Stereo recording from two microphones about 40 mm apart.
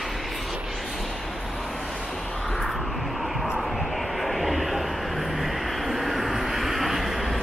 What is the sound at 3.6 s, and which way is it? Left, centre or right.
Vehicle, centre.